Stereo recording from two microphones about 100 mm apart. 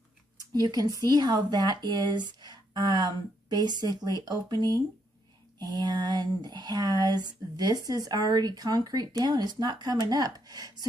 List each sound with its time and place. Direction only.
0.5 s speech: 40° right (ahead or behind)